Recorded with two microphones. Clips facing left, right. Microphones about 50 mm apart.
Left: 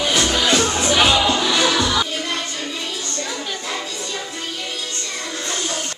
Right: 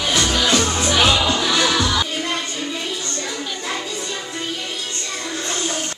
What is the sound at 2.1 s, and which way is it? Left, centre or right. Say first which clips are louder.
Music: right 1 dB; centre.